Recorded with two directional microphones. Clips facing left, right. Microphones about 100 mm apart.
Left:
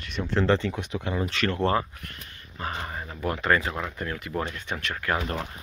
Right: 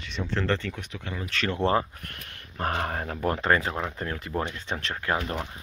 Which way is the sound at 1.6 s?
20° right (ahead or behind).